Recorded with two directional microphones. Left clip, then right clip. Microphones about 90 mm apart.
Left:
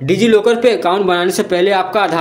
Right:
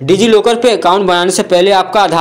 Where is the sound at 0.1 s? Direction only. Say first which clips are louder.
Right 3 dB; 10° right (ahead or behind).